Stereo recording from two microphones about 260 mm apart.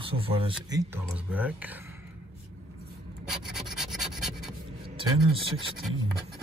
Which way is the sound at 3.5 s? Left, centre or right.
Centre.